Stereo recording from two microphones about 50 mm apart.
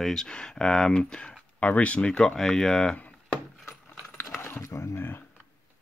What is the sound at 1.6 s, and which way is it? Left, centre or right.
Speech, left.